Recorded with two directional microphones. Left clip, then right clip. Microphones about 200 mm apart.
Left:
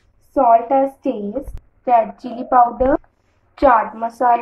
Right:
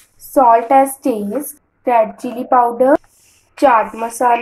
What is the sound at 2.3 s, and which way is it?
Speech, 30° right (ahead or behind).